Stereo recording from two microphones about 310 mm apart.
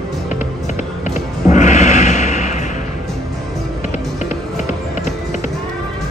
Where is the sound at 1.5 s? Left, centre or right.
Left.